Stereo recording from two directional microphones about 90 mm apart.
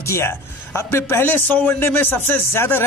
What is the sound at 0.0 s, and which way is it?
A man's voice, 30° left (ahead or behind).